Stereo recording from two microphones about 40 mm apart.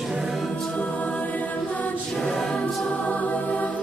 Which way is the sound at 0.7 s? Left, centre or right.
Left.